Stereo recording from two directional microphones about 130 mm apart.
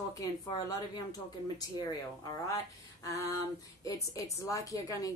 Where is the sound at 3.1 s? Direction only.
25° left (ahead or behind).